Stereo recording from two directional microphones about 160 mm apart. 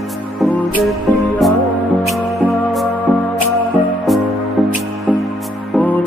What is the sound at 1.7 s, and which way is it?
Music, 10° left (ahead or behind).